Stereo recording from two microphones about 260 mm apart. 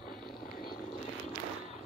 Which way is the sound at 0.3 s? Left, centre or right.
Left.